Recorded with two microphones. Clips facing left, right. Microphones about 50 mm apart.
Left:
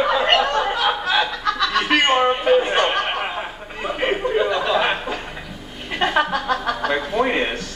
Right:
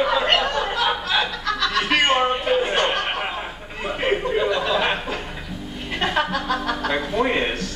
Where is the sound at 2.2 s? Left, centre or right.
Centre.